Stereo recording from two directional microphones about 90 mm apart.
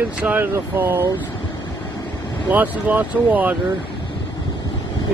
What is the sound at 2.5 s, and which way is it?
Speech, 20° right (ahead or behind).